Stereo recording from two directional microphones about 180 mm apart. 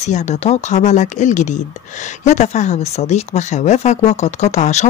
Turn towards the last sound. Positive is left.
turn(degrees=40)  # may be behind; listen again after turning